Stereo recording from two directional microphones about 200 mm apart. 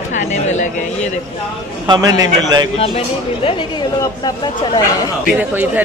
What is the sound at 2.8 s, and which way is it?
Speech, 25° left (ahead or behind).